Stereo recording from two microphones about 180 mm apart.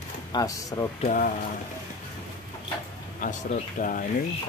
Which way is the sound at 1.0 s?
45° left (ahead or behind).